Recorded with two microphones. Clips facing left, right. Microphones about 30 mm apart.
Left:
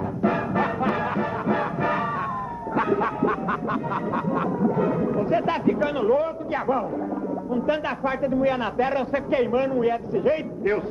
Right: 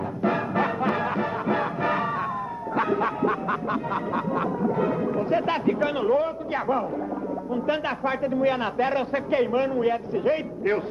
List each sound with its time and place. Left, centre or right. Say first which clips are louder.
0.2 s music: left 1 dB; centre
3.7 s a sound: left 1 dB; centre
4.7 s speech: left 1 dB; centre